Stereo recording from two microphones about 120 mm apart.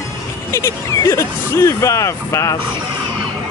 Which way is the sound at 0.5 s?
25° left (ahead or behind).